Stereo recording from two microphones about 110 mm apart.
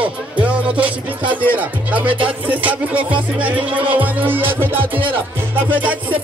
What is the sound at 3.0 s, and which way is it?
Music, 50° right (ahead or behind).